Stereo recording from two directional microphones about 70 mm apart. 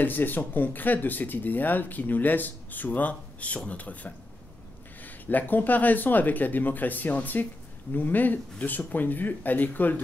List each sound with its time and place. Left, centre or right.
0.0 s speech: left